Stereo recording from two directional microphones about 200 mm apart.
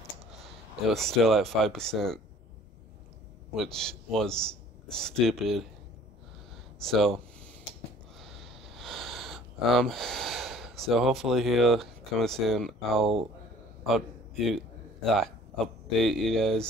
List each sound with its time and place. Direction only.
0.9 s a man's voice: centre (ahead or behind)
3.5 s a man's voice: centre (ahead or behind)
6.8 s speech: centre (ahead or behind)
8.2 s a sound: centre (ahead or behind)
13.0 s speech: 25° right (ahead or behind)
13.8 s a man's voice: centre (ahead or behind)